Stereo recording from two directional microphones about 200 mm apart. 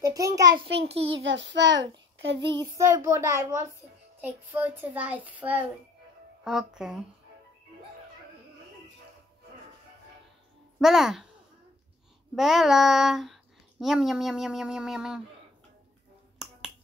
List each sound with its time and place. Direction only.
0.0 s a child's voice: 15° right (ahead or behind)
0.8 s a child's voice: 30° right (ahead or behind)
1.2 s child singing: 65° right (ahead or behind)
2.8 s a child's voice: 15° right (ahead or behind)
10.8 s speech: centre (ahead or behind)
12.4 s speech: centre (ahead or behind)
16.4 s finger snapping: centre (ahead or behind)